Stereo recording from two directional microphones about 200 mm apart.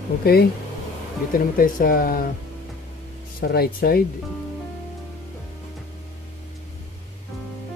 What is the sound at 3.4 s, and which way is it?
Speech, 50° left (ahead or behind).